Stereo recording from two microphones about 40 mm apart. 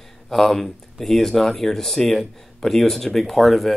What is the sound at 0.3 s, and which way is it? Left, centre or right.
Speech, centre.